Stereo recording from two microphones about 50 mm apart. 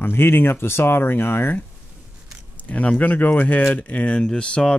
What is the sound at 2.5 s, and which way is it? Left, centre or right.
Speech, left.